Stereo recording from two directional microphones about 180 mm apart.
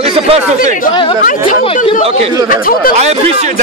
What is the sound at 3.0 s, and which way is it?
Speech, 40° right (ahead or behind).